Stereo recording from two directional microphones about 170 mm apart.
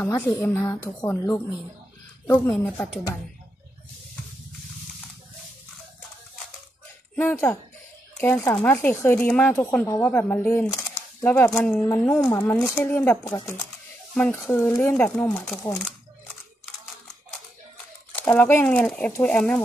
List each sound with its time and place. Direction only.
0.0 s speech: 15° left (ahead or behind)
2.5 s speech: 5° left (ahead or behind)
7.2 s speech: 15° left (ahead or behind)
18.1 s speech: 10° left (ahead or behind)